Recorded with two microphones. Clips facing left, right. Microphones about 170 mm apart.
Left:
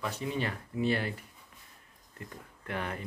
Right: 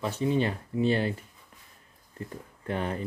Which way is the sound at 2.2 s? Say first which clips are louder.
Right 6 dB; 30° right (ahead or behind).